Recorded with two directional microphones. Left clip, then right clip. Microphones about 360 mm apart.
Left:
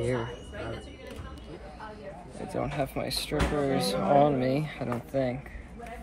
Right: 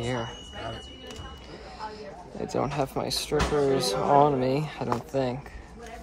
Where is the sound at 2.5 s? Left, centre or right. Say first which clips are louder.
Right 3 dB; centre.